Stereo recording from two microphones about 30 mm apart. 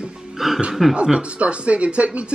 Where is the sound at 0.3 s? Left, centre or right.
Centre.